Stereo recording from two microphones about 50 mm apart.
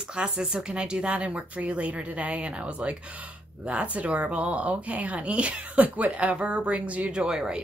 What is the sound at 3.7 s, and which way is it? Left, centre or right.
Speech, right.